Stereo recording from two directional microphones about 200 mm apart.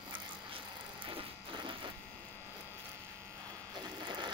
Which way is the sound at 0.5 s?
25° right (ahead or behind).